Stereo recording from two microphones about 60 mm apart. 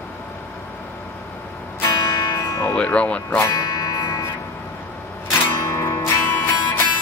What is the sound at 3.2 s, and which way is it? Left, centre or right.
Speech, left.